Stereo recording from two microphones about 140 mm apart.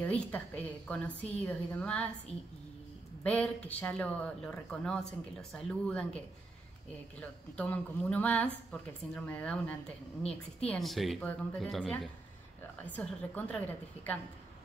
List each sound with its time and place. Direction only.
0.0 s a woman's voice: 10° left (ahead or behind)
3.3 s a woman's voice: 10° left (ahead or behind)
7.2 s a woman's voice: 10° left (ahead or behind)